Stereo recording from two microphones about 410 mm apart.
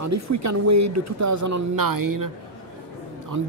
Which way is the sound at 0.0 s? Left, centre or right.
Right.